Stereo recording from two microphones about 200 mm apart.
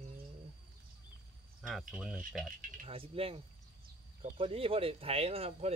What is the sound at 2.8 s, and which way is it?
Speech, 25° right (ahead or behind).